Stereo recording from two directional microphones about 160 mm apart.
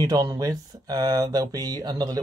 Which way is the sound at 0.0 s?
25° right (ahead or behind).